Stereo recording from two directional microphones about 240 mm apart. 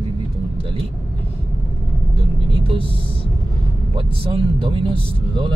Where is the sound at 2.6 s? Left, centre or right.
Right.